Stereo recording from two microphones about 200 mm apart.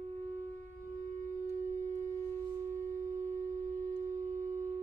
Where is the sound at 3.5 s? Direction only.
40° right (ahead or behind).